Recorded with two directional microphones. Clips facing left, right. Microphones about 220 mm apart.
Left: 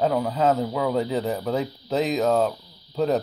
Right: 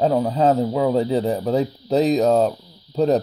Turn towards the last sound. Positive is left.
turn(degrees=-35)  # may be behind; listen again after turning